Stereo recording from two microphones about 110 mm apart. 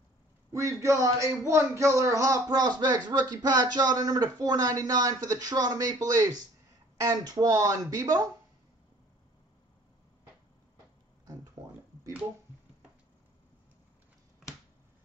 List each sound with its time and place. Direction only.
0.5 s speech: 30° right (ahead or behind)